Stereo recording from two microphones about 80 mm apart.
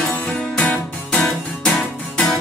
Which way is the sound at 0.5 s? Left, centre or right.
Centre.